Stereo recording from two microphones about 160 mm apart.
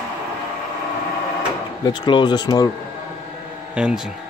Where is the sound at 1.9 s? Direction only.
30° left (ahead or behind).